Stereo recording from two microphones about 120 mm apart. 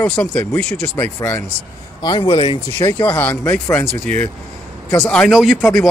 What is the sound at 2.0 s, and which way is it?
Speech, 40° left (ahead or behind).